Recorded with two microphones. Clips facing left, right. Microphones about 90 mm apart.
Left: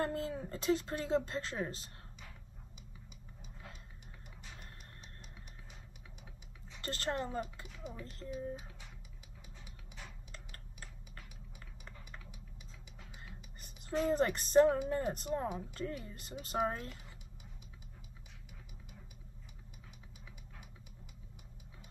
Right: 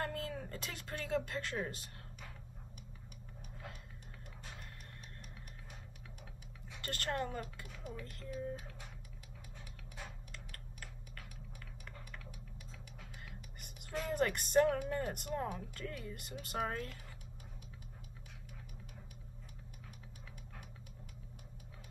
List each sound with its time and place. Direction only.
0.0 s speech: 25° left (ahead or behind)
6.8 s speech: 25° left (ahead or behind)
8.0 s speech: 30° left (ahead or behind)
8.3 s speech: 15° left (ahead or behind)
10.3 s typing: 30° left (ahead or behind)
13.1 s whispering: 25° left (ahead or behind)
14.8 s speech: 25° left (ahead or behind)